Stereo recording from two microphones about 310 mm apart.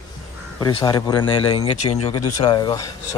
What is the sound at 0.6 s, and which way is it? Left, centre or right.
Speech, centre.